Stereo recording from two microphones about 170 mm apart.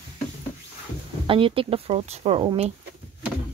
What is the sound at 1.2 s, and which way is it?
Speech, 30° right (ahead or behind).